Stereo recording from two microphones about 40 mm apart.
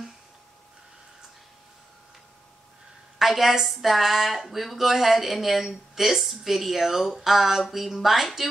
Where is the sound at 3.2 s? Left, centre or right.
Centre.